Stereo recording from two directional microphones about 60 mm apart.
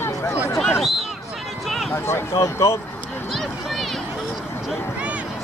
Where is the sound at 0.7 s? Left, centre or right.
Centre.